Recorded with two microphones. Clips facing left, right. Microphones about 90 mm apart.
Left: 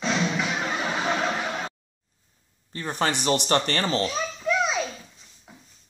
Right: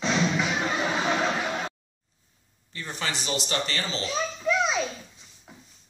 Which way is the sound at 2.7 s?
45° left (ahead or behind).